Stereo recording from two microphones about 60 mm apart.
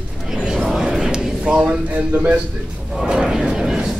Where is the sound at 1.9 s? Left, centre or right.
Right.